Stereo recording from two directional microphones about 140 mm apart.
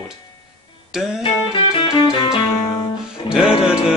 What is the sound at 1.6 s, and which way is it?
Music, 45° left (ahead or behind).